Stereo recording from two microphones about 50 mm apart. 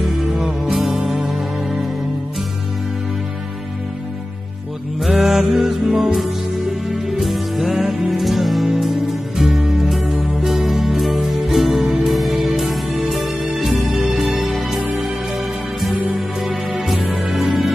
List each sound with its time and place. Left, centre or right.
0.0 s music: centre
5.0 s music: centre
16.4 s music: centre